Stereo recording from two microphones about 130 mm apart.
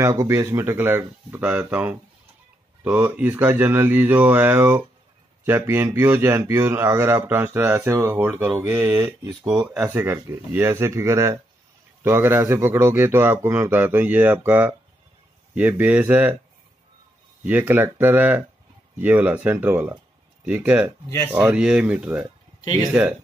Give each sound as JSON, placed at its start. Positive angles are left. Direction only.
{"t": 0.0, "sound": "a man's voice", "side_deg": -25}
{"t": 17.5, "sound": "a man's voice", "side_deg": -10}